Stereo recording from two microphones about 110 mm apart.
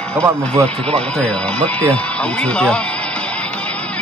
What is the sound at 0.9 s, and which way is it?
Speech, 10° left (ahead or behind).